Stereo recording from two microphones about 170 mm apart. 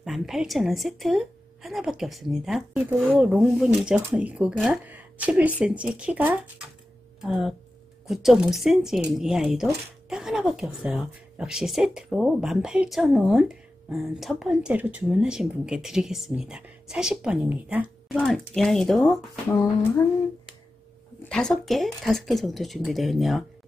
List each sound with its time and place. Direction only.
0.0 s a woman's voice: centre (ahead or behind)
21.2 s a woman's voice: 5° left (ahead or behind)